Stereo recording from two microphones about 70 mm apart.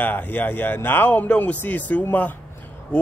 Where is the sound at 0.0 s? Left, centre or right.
Left.